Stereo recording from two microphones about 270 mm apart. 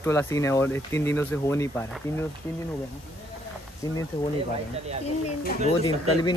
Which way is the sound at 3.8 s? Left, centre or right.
Centre.